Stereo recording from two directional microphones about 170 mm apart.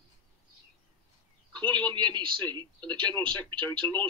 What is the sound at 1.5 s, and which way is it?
Speech, 10° left (ahead or behind).